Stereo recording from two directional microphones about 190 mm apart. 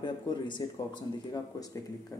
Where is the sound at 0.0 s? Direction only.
25° left (ahead or behind).